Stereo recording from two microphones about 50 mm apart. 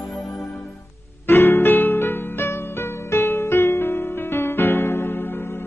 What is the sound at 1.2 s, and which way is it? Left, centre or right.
Music, left.